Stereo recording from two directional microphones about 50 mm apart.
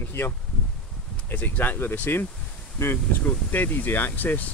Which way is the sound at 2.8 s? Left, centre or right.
Left.